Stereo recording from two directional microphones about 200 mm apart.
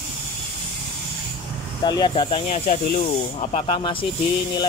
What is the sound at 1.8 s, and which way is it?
Speech, 20° left (ahead or behind).